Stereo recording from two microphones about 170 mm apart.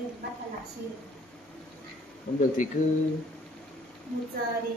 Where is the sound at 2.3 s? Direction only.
50° left (ahead or behind).